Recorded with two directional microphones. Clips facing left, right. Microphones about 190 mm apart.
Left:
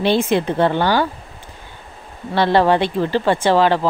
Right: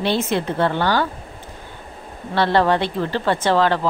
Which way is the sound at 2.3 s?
15° left (ahead or behind).